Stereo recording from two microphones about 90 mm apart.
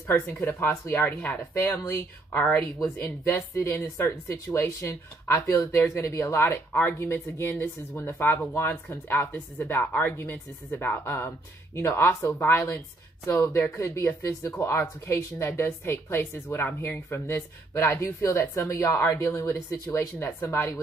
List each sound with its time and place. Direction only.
0.1 s a woman's voice: 25° left (ahead or behind)
1.5 s a woman's voice: 30° left (ahead or behind)
13.3 s a woman's voice: 35° left (ahead or behind)